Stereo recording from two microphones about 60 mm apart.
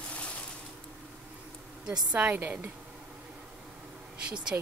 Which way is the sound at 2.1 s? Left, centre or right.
Right.